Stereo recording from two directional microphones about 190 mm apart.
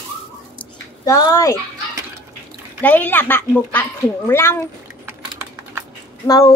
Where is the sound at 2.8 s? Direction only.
10° left (ahead or behind).